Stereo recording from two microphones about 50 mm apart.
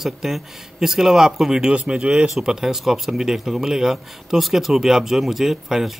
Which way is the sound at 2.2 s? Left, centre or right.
Centre.